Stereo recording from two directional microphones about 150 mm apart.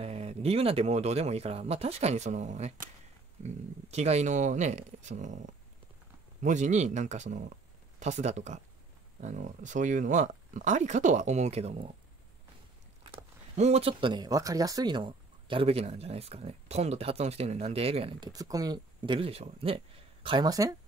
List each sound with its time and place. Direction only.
0.0 s speech: 45° right (ahead or behind)
6.4 s speech: 50° right (ahead or behind)
13.6 s speech: 45° right (ahead or behind)
18.3 s speech: 25° right (ahead or behind)